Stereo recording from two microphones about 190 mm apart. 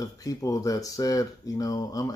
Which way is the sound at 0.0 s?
15° left (ahead or behind).